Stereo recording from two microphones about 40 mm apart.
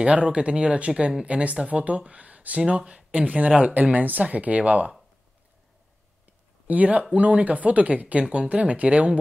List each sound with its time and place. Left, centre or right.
0.0 s speech: right
2.6 s speech: right
3.2 s speech: right
6.7 s speech: right